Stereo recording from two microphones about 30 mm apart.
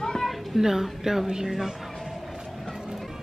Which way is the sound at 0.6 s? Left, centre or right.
Centre.